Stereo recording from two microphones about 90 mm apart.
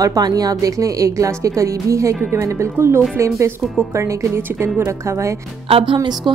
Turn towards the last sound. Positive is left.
turn(degrees=-50)  # may be behind; listen again after turning